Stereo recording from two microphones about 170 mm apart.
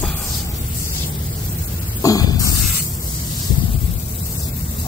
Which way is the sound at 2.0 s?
20° left (ahead or behind).